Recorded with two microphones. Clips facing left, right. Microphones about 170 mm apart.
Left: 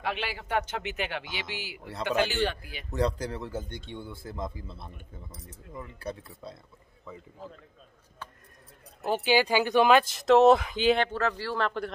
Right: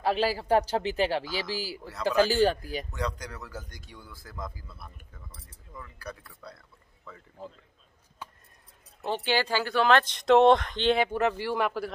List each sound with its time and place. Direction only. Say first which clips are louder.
0.0 s a man's voice: right 7 dB; 35° right (ahead or behind)
2.9 s speech: left 6 dB; 35° left (ahead or behind); by 7.2 s 20° left (ahead or behind)
9.0 s speech: left 3 dB; 10° left (ahead or behind)
11.0 s speech: right 2 dB; 15° right (ahead or behind)